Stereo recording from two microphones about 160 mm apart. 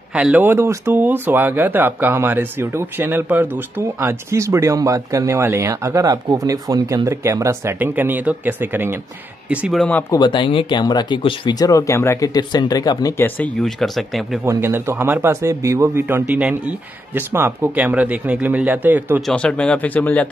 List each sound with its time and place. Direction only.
0.1 s speech: 10° right (ahead or behind)
10.1 s speech: 30° left (ahead or behind)
13.2 s speech: 5° left (ahead or behind)
14.4 s speech: 15° right (ahead or behind)
19.2 s speech: 5° left (ahead or behind)